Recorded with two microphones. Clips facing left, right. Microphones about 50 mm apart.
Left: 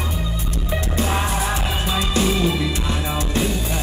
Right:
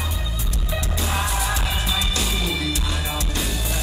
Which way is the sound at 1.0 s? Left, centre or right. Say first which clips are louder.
Left 3 dB; left.